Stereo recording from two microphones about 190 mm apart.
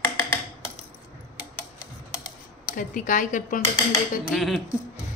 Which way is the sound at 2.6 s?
45° left (ahead or behind).